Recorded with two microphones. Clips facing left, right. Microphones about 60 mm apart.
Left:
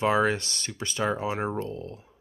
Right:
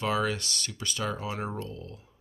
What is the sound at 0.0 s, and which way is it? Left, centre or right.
Speech, left.